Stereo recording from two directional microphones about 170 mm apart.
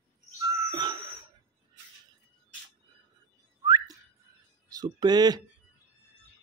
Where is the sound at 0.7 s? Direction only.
25° right (ahead or behind).